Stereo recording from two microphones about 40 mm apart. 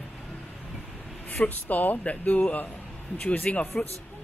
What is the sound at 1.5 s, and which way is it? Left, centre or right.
Speech, left.